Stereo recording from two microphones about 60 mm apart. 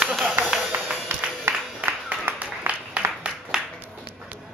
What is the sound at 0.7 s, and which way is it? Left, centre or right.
Music, right.